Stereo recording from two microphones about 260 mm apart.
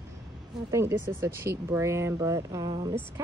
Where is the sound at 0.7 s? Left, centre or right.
Centre.